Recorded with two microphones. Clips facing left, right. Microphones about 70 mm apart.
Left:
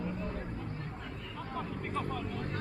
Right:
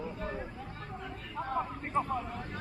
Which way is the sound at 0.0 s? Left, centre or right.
Right.